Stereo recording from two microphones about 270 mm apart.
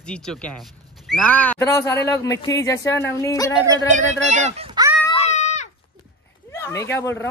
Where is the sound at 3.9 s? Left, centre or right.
Right.